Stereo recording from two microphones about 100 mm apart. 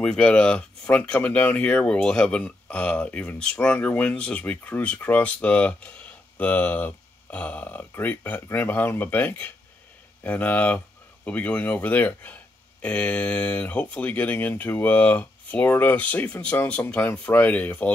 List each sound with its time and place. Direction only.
0.0 s speech: 10° left (ahead or behind)